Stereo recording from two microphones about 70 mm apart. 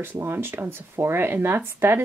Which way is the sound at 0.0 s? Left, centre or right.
Right.